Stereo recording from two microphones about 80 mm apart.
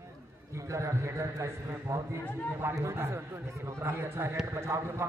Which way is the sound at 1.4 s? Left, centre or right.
Right.